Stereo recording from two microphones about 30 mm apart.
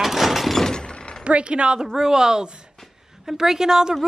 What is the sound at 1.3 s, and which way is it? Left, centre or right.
Speech, right.